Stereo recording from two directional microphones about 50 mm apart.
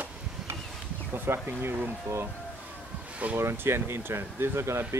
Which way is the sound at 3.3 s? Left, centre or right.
Right.